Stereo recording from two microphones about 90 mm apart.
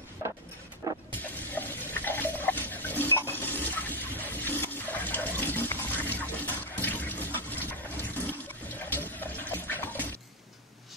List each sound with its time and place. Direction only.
0.8 s vehicle: 40° right (ahead or behind)
1.2 s a sound: 20° left (ahead or behind)
8.0 s water: 20° left (ahead or behind)